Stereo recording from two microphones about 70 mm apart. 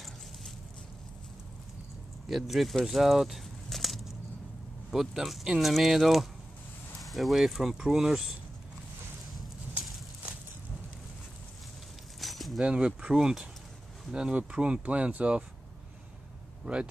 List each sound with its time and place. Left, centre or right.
2.2 s speech: centre
12.2 s a sound: centre
12.6 s speech: centre